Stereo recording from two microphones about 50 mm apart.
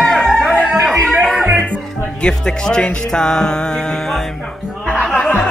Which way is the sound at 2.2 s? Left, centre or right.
Centre.